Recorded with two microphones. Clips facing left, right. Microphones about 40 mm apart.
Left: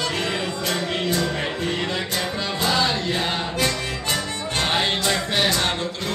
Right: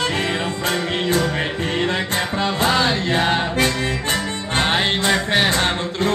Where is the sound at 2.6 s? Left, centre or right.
Right.